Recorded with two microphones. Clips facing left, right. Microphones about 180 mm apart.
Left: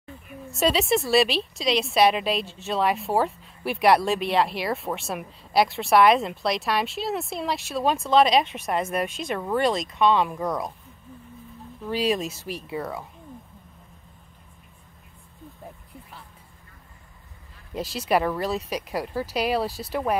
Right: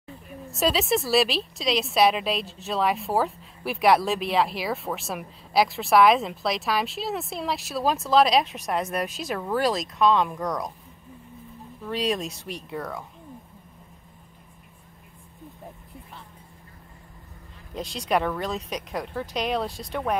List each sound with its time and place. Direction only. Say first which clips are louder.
0.5 s speech: left 1 dB; centre (ahead or behind)
11.8 s speech: left 2 dB; centre (ahead or behind)
17.7 s speech: left 2 dB; 5° left (ahead or behind)